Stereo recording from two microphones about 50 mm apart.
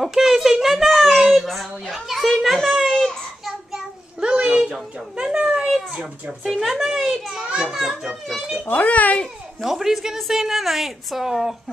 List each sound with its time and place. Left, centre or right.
0.0 s a sound: centre
2.0 s a child's voice: centre
2.9 s child singing: centre
4.2 s a sound: centre
5.9 s speech: right
6.5 s a woman's voice: centre
8.6 s a child's voice: left
9.6 s a woman's voice: centre